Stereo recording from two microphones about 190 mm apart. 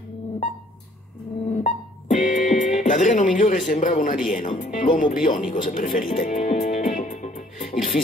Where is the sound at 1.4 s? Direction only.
40° left (ahead or behind).